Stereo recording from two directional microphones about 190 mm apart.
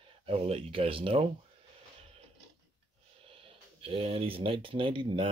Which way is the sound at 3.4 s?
30° right (ahead or behind).